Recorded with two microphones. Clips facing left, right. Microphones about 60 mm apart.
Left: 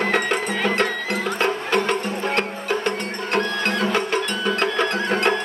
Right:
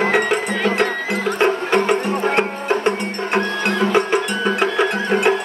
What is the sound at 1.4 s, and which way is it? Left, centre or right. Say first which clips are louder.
Music: right 5 dB; right.